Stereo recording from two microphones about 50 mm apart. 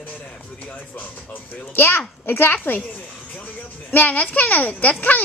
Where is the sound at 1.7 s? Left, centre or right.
Left.